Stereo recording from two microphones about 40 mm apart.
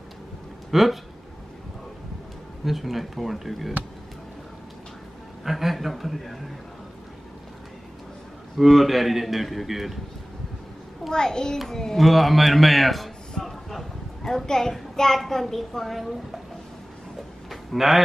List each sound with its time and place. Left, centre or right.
0.7 s speech: centre
2.6 s a man's voice: centre
5.4 s a man's voice: centre
8.5 s a man's voice: centre
11.1 s a child's voice: centre
17.5 s a sound: centre